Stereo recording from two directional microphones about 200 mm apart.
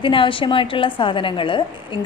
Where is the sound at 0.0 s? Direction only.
25° left (ahead or behind).